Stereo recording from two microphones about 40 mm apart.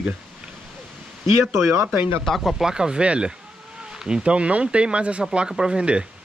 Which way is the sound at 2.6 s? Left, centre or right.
Centre.